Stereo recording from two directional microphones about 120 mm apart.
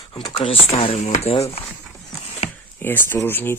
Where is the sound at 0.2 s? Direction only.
50° left (ahead or behind).